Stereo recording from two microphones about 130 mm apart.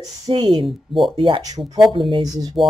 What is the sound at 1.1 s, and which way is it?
Speech, 40° right (ahead or behind).